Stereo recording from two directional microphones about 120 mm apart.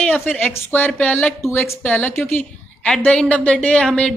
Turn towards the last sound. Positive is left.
turn(degrees=10)  # may be behind; listen again after turning